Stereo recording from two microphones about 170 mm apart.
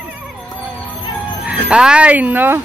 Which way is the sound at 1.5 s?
5° right (ahead or behind).